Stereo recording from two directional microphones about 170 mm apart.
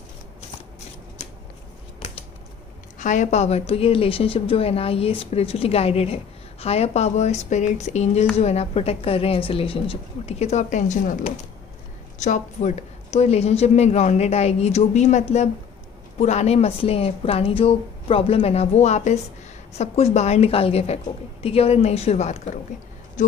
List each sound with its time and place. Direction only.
3.0 s a woman's voice: 45° left (ahead or behind)